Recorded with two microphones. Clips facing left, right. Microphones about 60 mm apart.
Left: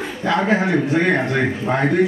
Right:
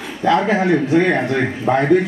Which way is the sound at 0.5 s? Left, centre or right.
Centre.